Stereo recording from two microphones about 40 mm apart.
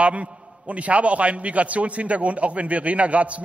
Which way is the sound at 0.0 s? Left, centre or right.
Right.